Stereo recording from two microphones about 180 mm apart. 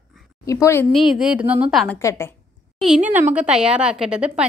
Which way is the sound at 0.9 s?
5° right (ahead or behind).